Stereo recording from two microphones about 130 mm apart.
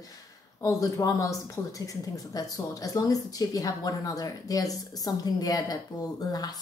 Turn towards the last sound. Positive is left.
turn(degrees=30)  # may be behind; listen again after turning